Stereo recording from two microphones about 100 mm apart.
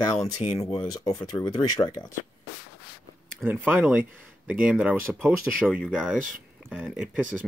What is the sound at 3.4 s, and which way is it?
Speech, 20° right (ahead or behind).